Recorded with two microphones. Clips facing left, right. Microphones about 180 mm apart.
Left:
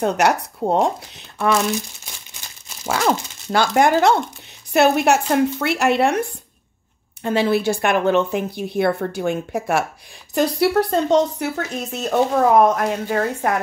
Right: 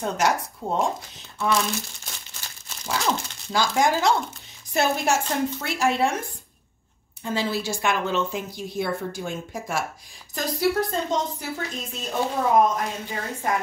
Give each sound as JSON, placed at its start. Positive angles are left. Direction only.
{"t": 0.0, "sound": "speech", "side_deg": 65}
{"t": 2.8, "sound": "speech", "side_deg": 80}
{"t": 7.2, "sound": "speech", "side_deg": 65}